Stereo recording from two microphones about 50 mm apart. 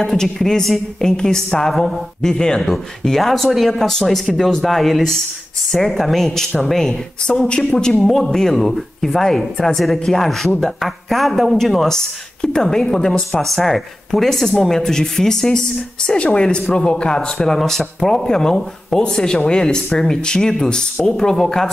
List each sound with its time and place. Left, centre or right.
0.0 s speech: centre
17.4 s speech: centre